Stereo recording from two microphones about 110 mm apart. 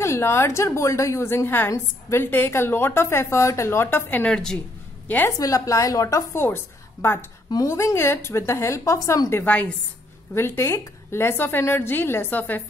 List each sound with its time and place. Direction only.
0.0 s a woman's voice: 25° left (ahead or behind)
5.4 s a woman's voice: 30° left (ahead or behind)
9.4 s a woman's voice: 10° left (ahead or behind)
10.3 s a woman's voice: 20° left (ahead or behind)